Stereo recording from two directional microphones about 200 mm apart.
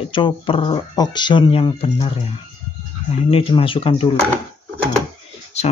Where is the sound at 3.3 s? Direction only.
25° left (ahead or behind).